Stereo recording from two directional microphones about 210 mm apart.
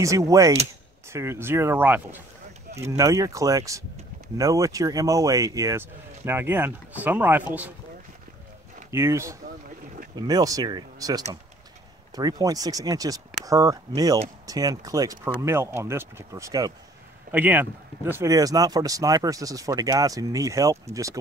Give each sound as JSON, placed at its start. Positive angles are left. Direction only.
{"t": 0.0, "sound": "speech", "side_deg": -15}
{"t": 8.9, "sound": "speech", "side_deg": -15}